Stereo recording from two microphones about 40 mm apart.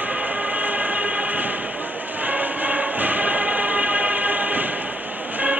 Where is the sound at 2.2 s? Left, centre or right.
Right.